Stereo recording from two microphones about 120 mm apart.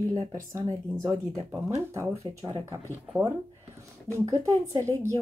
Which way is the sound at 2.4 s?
35° right (ahead or behind).